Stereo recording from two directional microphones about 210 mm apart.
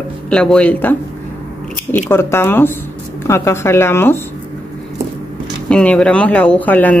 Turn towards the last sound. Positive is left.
turn(degrees=5)  # may be behind; listen again after turning